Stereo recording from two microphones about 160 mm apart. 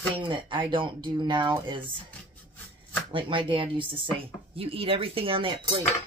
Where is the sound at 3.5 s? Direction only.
30° right (ahead or behind).